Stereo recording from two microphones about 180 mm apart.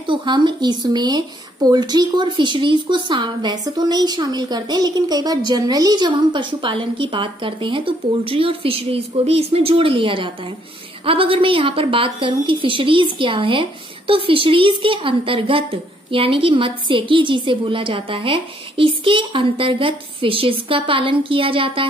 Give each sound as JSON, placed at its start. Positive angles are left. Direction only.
{"t": 0.0, "sound": "a woman's voice", "side_deg": -25}